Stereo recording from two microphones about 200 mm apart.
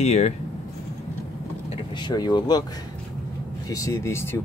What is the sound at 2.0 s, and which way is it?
Speech, 20° left (ahead or behind).